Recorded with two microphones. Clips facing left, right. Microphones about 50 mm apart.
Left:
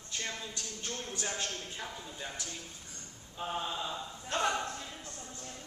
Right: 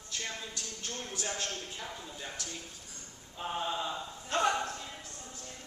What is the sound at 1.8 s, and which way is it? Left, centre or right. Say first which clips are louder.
Speech: even; centre.